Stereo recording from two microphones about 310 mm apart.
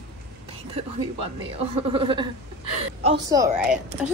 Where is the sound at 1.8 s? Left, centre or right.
Centre.